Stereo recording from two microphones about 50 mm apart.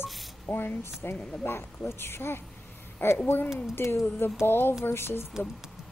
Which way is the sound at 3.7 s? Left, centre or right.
Left.